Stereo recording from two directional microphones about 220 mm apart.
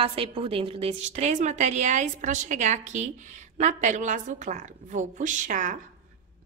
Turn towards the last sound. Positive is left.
turn(degrees=-35)  # may be behind; listen again after turning